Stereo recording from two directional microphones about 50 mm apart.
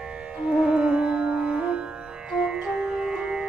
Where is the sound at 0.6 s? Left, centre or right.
Centre.